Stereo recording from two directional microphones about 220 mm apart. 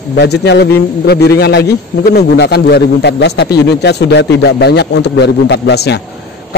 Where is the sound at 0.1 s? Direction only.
50° left (ahead or behind).